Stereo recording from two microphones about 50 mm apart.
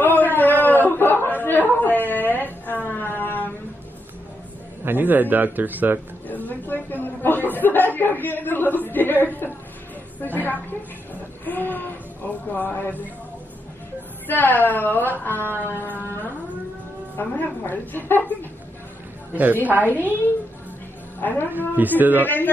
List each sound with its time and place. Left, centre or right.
0.0 s a sound: left
4.8 s speech: right
6.2 s chatter: left
10.2 s a woman's voice: left
11.4 s a sound: left
14.2 s a woman's voice: left
17.2 s a woman's voice: left
19.3 s speech: right
21.2 s a woman's voice: left
21.5 s speech: right
22.2 s a woman's voice: left